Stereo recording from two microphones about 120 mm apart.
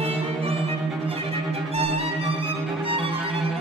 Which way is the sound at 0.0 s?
55° right (ahead or behind).